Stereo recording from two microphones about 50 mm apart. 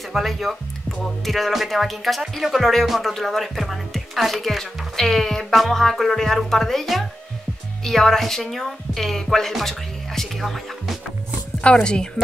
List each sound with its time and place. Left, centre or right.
0.1 s speech: centre
11.6 s speech: centre